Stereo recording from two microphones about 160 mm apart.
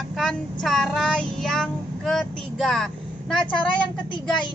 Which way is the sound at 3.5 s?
30° left (ahead or behind).